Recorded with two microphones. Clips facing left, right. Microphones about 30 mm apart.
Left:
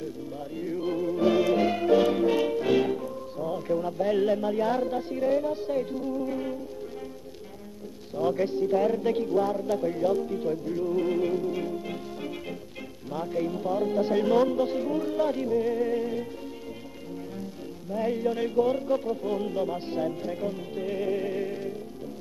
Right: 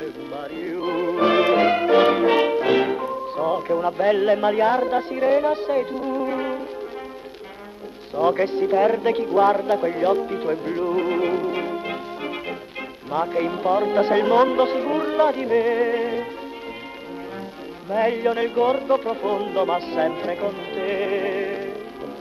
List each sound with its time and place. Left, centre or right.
0.6 s music: right
4.4 s speech: right
4.6 s music: right
8.2 s music: right
9.7 s speech: right
13.1 s music: right
14.5 s speech: right
14.8 s music: right
17.8 s speech: right